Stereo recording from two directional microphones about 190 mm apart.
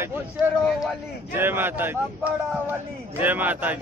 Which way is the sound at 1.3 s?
10° right (ahead or behind).